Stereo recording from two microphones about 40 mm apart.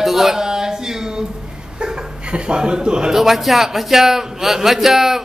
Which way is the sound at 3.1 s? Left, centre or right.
Centre.